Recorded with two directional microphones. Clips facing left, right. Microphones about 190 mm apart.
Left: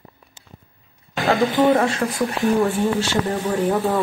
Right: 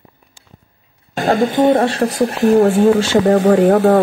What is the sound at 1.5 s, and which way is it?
Speech, 30° right (ahead or behind).